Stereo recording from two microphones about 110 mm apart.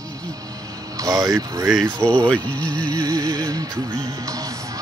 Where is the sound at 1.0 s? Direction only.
30° right (ahead or behind).